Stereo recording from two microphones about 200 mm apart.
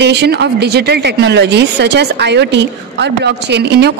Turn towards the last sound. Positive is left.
turn(degrees=-60)  # may be behind; listen again after turning